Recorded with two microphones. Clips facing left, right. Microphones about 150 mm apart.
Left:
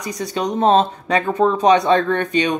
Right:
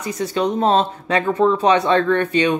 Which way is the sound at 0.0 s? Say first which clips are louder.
Right 2 dB; 15° left (ahead or behind).